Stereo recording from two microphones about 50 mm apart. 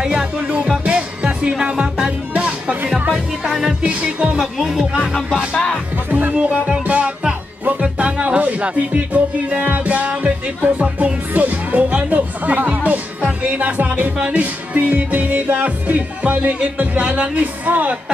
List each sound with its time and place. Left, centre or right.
0.0 s music: right
3.8 s music: right
4.4 s speech: centre
5.0 s music: centre
5.5 s music: centre
6.0 s music: right
7.8 s music: right
11.3 s speech: right
14.2 s music: right